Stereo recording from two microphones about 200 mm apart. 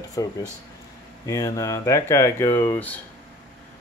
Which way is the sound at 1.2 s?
15° left (ahead or behind).